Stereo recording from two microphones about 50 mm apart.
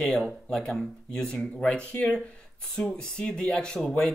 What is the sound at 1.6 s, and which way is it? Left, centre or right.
Speech, left.